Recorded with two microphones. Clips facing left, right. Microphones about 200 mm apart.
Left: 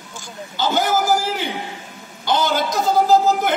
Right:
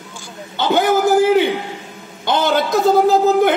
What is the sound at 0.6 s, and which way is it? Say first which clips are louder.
A man's voice: right 5 dB; 60° right (ahead or behind).